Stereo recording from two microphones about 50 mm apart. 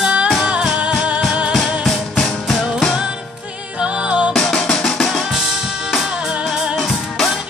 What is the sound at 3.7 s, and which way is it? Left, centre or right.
Music, centre.